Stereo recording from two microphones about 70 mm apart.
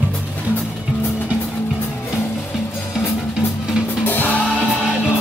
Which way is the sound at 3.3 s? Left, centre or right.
Centre.